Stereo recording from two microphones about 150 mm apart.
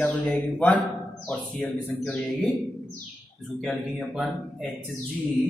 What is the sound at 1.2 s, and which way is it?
Speech, 10° left (ahead or behind).